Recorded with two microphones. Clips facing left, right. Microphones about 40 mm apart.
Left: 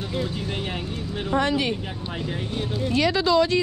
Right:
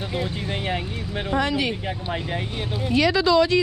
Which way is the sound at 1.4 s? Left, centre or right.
Right.